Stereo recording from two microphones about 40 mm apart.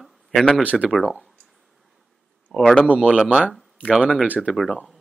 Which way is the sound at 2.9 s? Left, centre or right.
Centre.